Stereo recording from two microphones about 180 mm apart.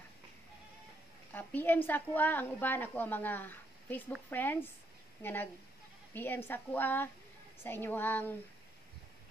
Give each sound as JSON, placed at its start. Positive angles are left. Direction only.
{"t": 1.3, "sound": "a woman's voice", "side_deg": 10}